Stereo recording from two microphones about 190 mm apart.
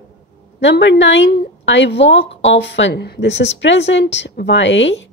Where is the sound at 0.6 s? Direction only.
70° left (ahead or behind).